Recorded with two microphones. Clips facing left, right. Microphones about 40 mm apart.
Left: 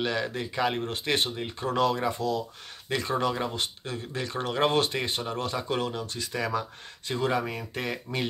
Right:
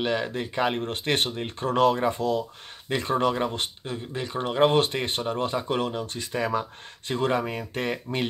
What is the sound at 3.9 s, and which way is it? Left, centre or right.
A man's voice, right.